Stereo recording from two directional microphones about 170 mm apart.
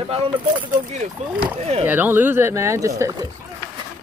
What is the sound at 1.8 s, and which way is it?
Speech, 10° right (ahead or behind).